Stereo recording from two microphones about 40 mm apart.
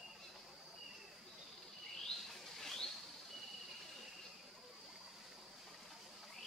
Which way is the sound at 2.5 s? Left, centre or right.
Centre.